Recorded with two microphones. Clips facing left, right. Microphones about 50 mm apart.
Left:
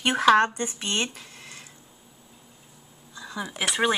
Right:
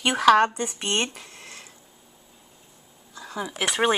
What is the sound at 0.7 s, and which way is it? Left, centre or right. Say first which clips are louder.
Speech: right 2 dB; right.